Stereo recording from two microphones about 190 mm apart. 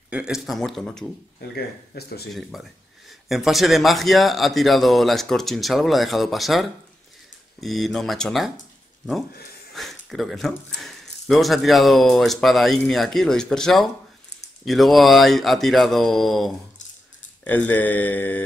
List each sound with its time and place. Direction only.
0.1 s speech: 5° right (ahead or behind)
1.5 s speech: 55° left (ahead or behind)
2.5 s speech: centre (ahead or behind)
9.8 s speech: centre (ahead or behind)
17.5 s mantra: 10° left (ahead or behind)